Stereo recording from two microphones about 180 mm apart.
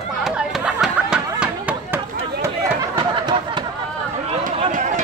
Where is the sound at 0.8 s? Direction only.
5° right (ahead or behind).